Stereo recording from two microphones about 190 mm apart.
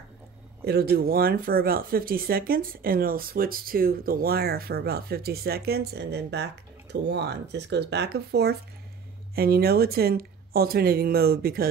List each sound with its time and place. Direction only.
0.7 s speech: 55° right (ahead or behind)